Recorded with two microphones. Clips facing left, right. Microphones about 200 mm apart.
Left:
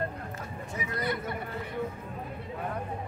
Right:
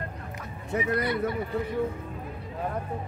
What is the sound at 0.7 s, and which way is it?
Speech, 65° right (ahead or behind).